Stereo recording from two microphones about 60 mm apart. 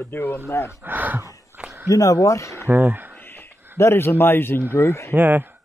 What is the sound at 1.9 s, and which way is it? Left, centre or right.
Speech, left.